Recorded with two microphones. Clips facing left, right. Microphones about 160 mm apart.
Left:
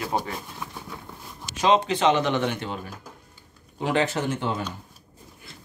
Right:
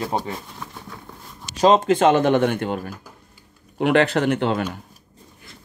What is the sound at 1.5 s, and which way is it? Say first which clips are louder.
Speech: right 5 dB; 40° right (ahead or behind).